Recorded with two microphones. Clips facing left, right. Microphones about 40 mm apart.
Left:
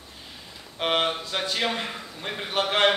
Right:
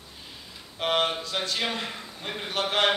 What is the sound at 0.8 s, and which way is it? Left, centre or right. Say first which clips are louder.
A man's voice: left 1 dB; centre.